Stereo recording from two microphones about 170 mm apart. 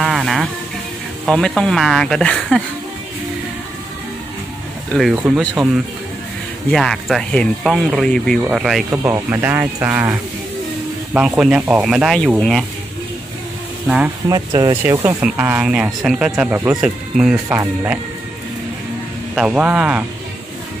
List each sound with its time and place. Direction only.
0.0 s music: centre (ahead or behind)
1.2 s speech: centre (ahead or behind)
4.9 s speech: 5° right (ahead or behind)
6.7 s speech: centre (ahead or behind)
11.1 s speech: 5° right (ahead or behind)
13.8 s speech: 5° right (ahead or behind)
14.3 s speech: 25° right (ahead or behind)
14.8 s speech: 15° right (ahead or behind)
19.3 s speech: 5° right (ahead or behind)